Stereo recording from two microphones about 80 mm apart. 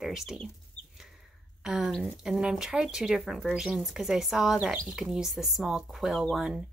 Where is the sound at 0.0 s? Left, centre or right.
Centre.